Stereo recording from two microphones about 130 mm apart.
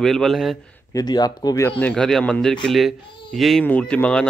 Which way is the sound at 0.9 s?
30° left (ahead or behind).